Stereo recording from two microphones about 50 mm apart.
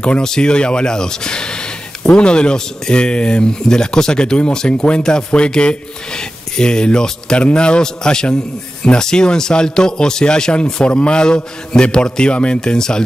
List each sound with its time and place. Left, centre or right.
0.2 s speech: centre